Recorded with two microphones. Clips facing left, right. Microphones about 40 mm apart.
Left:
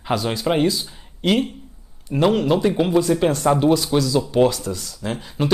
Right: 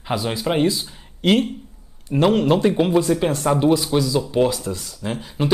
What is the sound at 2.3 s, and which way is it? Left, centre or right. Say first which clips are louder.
Speech: right 1 dB; right.